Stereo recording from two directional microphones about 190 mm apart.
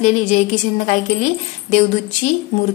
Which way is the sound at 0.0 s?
40° left (ahead or behind).